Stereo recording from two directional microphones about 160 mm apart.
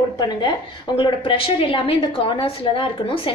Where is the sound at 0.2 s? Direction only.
25° left (ahead or behind).